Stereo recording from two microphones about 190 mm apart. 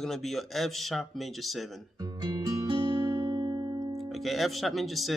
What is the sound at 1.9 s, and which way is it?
Music, 20° right (ahead or behind).